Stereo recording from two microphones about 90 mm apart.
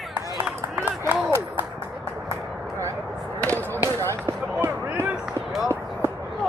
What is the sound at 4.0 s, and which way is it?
Basketball bounce, 35° right (ahead or behind).